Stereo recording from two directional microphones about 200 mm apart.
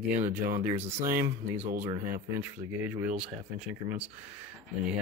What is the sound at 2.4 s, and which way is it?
Speech, 10° right (ahead or behind).